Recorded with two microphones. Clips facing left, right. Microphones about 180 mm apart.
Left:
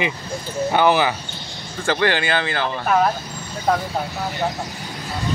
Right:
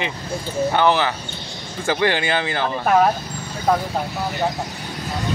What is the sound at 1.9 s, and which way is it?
Speech, 15° right (ahead or behind).